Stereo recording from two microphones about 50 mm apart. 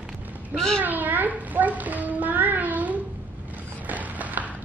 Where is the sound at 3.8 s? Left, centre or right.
Right.